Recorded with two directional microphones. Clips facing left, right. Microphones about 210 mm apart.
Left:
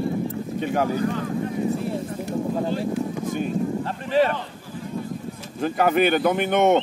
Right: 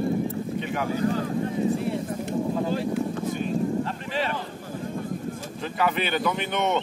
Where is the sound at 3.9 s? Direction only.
40° left (ahead or behind).